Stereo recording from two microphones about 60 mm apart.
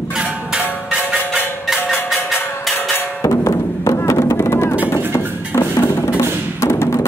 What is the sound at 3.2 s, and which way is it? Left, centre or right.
Drum, left.